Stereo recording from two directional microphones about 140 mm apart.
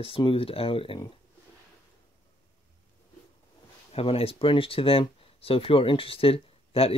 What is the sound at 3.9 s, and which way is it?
Speech, 45° left (ahead or behind).